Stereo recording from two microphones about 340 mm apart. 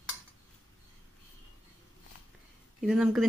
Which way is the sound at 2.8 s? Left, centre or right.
Centre.